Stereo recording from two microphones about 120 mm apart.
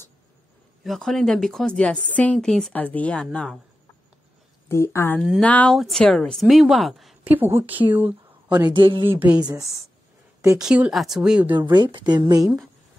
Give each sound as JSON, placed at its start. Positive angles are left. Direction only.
{"t": 0.8, "sound": "speech", "side_deg": 0}
{"t": 4.6, "sound": "a woman's voice", "side_deg": 25}
{"t": 7.2, "sound": "speech", "side_deg": -15}
{"t": 8.5, "sound": "speech", "side_deg": -35}
{"t": 9.0, "sound": "speech", "side_deg": -15}
{"t": 10.6, "sound": "speech", "side_deg": -5}
{"t": 11.5, "sound": "speech", "side_deg": -40}